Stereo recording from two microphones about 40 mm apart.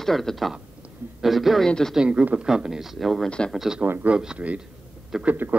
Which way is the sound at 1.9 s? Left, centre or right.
Right.